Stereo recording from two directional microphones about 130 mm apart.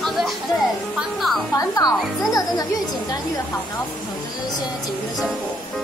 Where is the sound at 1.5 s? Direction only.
30° left (ahead or behind).